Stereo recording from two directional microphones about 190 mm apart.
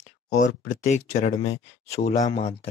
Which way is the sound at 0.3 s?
40° left (ahead or behind).